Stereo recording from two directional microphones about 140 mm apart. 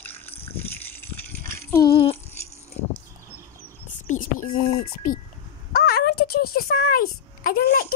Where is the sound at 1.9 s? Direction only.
40° left (ahead or behind).